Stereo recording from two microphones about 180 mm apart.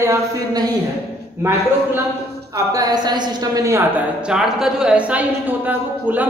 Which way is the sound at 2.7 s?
20° right (ahead or behind).